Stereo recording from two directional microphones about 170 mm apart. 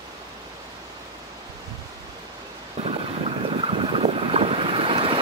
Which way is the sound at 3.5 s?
35° right (ahead or behind).